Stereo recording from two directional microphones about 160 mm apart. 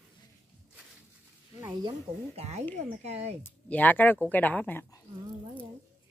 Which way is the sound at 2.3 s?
45° right (ahead or behind).